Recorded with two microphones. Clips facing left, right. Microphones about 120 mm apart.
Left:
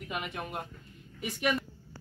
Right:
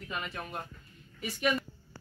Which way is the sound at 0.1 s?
15° left (ahead or behind).